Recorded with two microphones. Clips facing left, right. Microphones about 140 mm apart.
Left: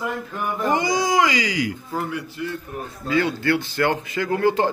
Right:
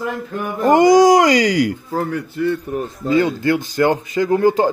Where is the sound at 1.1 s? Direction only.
40° right (ahead or behind).